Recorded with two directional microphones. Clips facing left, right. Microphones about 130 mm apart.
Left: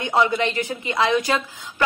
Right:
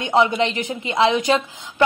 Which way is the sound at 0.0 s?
20° right (ahead or behind).